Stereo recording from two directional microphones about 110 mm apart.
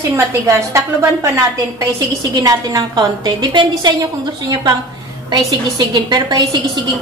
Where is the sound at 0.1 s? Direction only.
25° right (ahead or behind).